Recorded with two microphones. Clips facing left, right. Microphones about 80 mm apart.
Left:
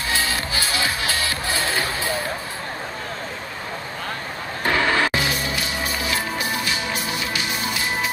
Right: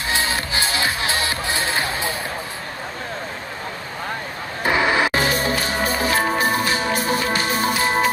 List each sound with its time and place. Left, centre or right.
0.1 s music: right
4.6 s music: centre
5.1 s music: right